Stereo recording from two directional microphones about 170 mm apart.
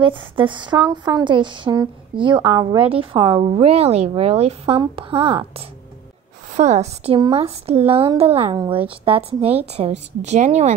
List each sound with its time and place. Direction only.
0.0 s speech: 30° right (ahead or behind)
2.8 s speech: 35° right (ahead or behind)
6.5 s speech: 40° right (ahead or behind)